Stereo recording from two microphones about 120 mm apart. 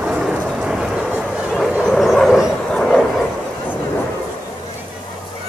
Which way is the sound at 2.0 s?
Centre (ahead or behind).